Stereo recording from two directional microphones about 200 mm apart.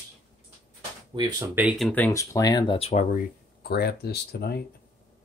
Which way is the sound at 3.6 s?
55° left (ahead or behind).